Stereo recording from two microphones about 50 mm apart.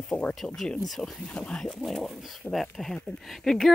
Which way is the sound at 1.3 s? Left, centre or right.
Centre.